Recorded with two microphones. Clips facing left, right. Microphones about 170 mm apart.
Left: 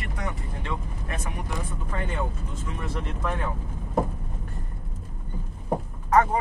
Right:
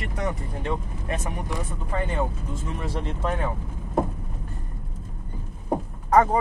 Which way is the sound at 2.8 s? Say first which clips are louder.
Right 1 dB; 35° right (ahead or behind).